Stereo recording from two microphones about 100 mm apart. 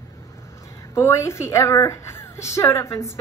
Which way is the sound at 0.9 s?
25° left (ahead or behind).